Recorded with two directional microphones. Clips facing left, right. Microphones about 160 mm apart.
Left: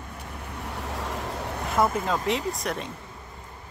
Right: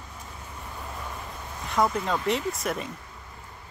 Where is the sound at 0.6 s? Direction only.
80° left.